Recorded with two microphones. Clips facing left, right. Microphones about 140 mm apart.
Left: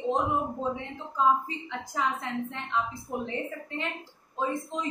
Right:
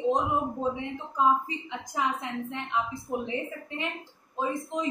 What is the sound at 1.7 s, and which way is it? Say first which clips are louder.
A woman's voice: even; 15° right (ahead or behind).